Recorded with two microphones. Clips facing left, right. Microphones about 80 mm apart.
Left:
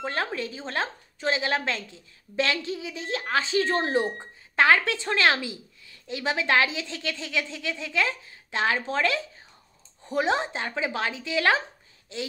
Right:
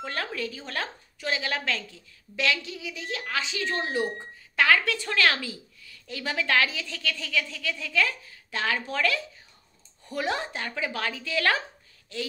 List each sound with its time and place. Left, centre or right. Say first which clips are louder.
0.0 s speech: left 3 dB; left